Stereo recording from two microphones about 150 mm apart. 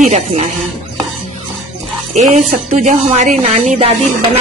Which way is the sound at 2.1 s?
50° right (ahead or behind).